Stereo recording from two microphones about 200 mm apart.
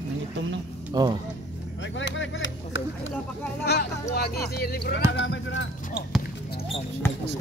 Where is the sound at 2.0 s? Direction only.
70° left (ahead or behind).